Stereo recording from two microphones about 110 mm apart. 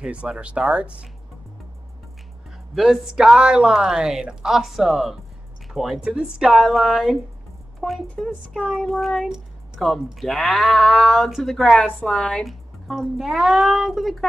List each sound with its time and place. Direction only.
0.0 s speech: 10° right (ahead or behind)
2.7 s speech: centre (ahead or behind)